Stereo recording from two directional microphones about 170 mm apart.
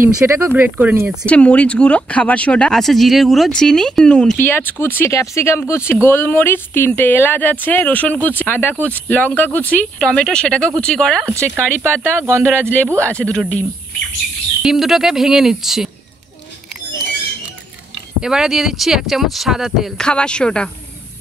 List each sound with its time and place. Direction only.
0.0 s speech: 10° right (ahead or behind)
1.2 s speech: 5° left (ahead or behind)
11.2 s speech: 15° right (ahead or behind)
13.1 s speech: 5° left (ahead or behind)
18.2 s speech: 5° right (ahead or behind)